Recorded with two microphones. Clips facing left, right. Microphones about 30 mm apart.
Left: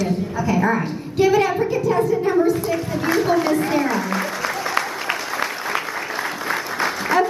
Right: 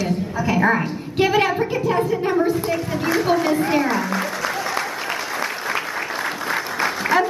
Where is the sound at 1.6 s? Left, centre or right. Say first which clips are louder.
Left 1 dB; right.